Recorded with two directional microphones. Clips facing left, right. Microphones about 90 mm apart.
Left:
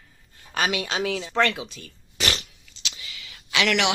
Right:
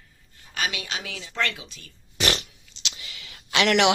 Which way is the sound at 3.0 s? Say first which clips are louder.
Left 1 dB; 40° right (ahead or behind).